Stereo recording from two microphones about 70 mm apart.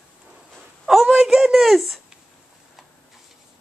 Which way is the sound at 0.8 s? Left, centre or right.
Centre.